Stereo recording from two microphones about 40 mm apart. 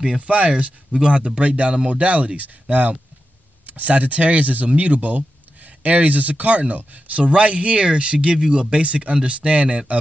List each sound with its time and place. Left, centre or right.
0.3 s speech: right